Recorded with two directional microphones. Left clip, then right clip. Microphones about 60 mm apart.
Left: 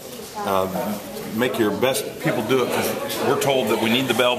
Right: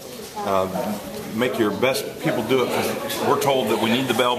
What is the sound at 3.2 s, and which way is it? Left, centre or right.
Speech, left.